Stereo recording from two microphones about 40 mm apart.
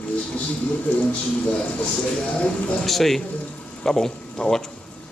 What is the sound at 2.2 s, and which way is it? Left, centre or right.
Speech, left.